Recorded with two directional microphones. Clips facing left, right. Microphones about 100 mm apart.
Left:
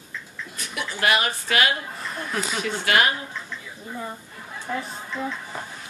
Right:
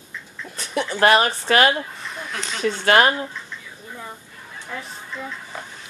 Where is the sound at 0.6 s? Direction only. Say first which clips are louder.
Right 8 dB; 35° right (ahead or behind).